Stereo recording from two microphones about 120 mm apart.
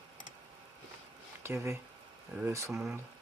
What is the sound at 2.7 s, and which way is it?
Speech, 10° right (ahead or behind).